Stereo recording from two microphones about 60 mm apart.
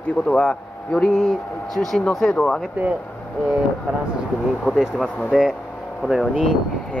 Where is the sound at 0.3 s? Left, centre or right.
Centre.